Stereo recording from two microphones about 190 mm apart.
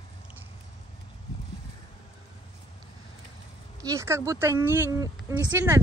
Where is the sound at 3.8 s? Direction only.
15° right (ahead or behind).